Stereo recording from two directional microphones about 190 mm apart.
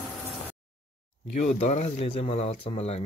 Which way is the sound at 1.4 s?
40° left (ahead or behind).